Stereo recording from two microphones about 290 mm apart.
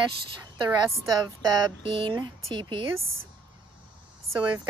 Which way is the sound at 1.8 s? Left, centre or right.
Centre.